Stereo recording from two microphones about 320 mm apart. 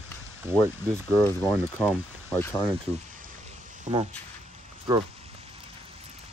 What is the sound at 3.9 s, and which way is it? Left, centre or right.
Speech, right.